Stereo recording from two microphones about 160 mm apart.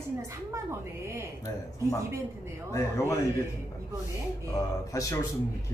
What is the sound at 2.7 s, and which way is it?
Speech, 20° left (ahead or behind).